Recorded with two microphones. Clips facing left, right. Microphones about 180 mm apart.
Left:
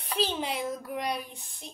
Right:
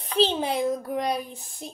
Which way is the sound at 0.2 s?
30° right (ahead or behind).